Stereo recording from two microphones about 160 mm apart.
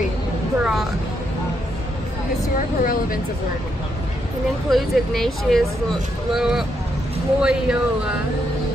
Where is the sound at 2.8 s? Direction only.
60° left (ahead or behind).